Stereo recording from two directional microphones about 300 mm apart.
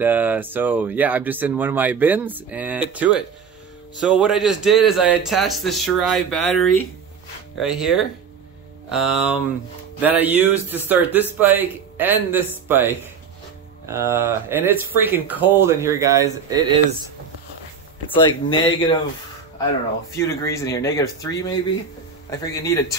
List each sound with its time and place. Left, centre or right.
0.0 s speech: centre
18.1 s speech: centre
20.2 s speech: centre
22.6 s speech: centre